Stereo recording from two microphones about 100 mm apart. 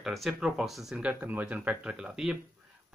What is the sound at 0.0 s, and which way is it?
Speech, centre (ahead or behind).